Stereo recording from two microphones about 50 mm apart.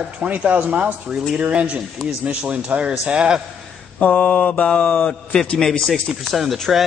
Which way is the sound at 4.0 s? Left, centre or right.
Left.